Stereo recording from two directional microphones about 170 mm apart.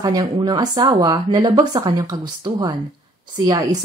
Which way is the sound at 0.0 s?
20° right (ahead or behind).